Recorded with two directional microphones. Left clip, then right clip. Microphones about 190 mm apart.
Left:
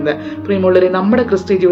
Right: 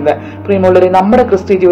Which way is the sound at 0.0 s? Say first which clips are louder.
Right 5 dB; 15° left (ahead or behind).